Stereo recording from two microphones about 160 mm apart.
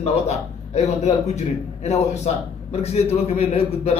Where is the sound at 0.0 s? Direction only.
45° left (ahead or behind).